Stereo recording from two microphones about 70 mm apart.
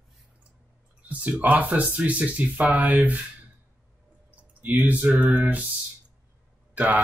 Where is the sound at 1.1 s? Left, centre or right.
Centre.